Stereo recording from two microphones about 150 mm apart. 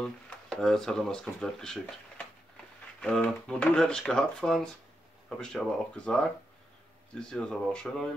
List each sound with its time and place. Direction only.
0.0 s speech: 5° left (ahead or behind)